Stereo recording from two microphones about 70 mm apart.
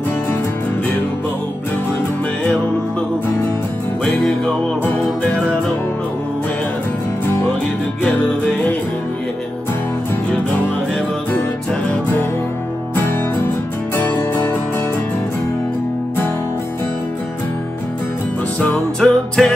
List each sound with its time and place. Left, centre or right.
4.0 s music: centre
8.0 s music: centre
13.9 s music: left
18.6 s music: centre